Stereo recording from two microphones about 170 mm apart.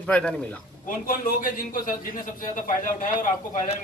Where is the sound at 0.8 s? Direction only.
55° left (ahead or behind).